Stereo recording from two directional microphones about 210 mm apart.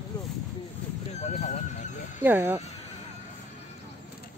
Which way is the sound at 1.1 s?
35° left (ahead or behind).